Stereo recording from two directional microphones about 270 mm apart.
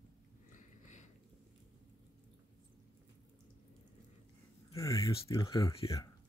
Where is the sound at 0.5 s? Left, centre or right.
Left.